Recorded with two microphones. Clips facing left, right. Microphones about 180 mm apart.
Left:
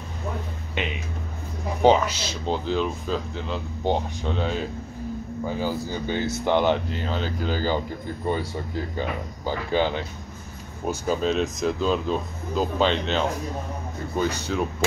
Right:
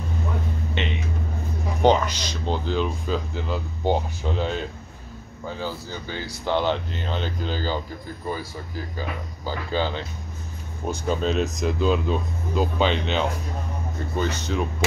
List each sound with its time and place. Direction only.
1.8 s speech: 5° left (ahead or behind)
5.5 s speech: 15° left (ahead or behind)
8.3 s speech: 25° left (ahead or behind)
10.9 s speech: 5° left (ahead or behind)
14.1 s speech: 10° left (ahead or behind)